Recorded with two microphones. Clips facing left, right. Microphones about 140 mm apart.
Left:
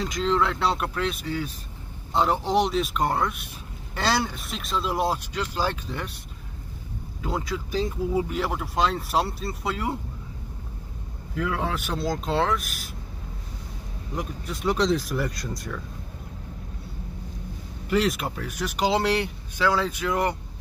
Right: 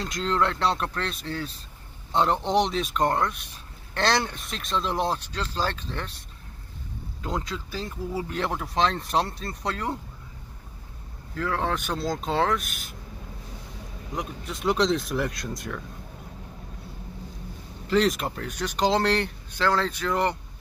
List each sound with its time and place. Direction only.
0.0 s speech: centre (ahead or behind)
7.2 s speech: 5° left (ahead or behind)
11.3 s speech: 10° left (ahead or behind)
14.1 s speech: centre (ahead or behind)
17.8 s speech: 5° left (ahead or behind)